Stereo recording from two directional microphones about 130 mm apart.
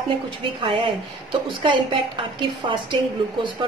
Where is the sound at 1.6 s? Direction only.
45° right (ahead or behind).